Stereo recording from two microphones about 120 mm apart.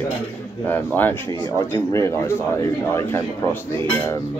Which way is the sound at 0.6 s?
15° left (ahead or behind).